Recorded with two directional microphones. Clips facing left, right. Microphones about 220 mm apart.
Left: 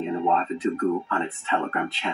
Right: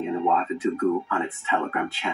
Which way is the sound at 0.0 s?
5° right (ahead or behind).